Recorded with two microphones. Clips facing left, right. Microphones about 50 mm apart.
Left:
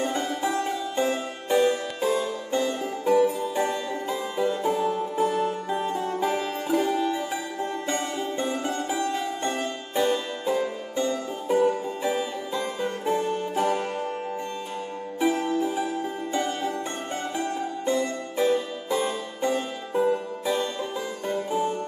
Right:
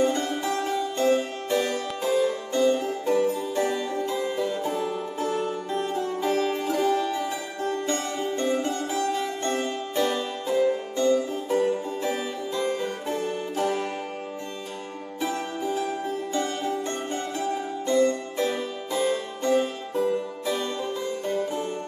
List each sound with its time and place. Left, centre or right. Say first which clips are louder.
0.0 s music: right 2 dB; centre
2.5 s harpsichord: right 3 dB; centre
4.4 s music: left 3 dB; centre
9.2 s harpsichord: right 1 dB; centre
10.4 s music: right 3 dB; centre
15.1 s music: left 6 dB; centre
17.8 s music: right 5 dB; centre